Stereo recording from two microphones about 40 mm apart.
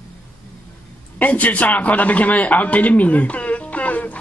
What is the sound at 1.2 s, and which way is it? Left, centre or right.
A man's voice, left.